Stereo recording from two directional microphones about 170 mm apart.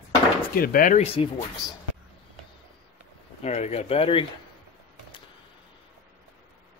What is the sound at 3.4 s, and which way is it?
Speech, 40° left (ahead or behind).